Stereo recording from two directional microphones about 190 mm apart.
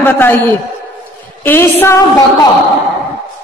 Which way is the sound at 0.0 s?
10° left (ahead or behind).